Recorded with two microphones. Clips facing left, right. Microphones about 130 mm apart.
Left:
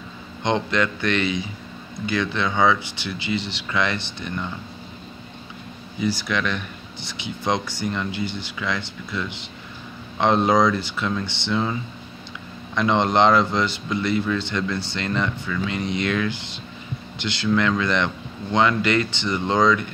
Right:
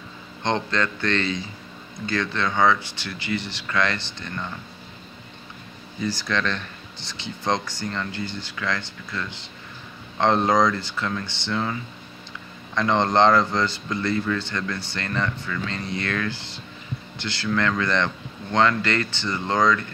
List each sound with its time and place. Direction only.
0.4 s speech: 15° left (ahead or behind)
5.9 s speech: 10° left (ahead or behind)